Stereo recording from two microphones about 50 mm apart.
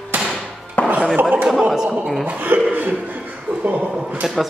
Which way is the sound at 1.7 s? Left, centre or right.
Centre.